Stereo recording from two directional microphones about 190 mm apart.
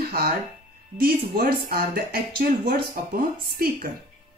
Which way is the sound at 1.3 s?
50° right (ahead or behind).